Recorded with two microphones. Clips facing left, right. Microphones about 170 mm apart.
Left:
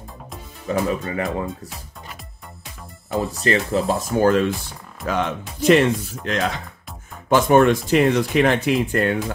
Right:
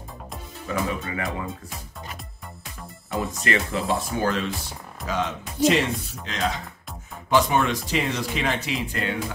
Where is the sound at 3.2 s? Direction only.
35° left (ahead or behind).